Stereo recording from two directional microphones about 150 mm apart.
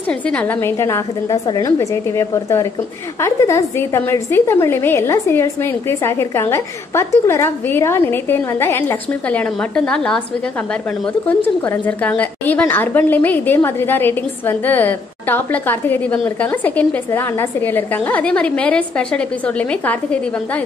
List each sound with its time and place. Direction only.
0.1 s a woman's voice: 10° left (ahead or behind)
11.2 s a woman's voice: 10° left (ahead or behind)